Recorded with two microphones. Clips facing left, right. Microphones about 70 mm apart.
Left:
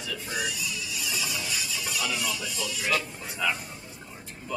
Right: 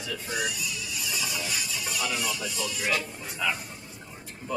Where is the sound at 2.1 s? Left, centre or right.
Centre.